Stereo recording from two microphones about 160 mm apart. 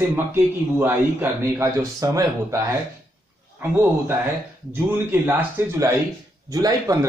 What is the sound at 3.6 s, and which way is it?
Speech, 15° right (ahead or behind).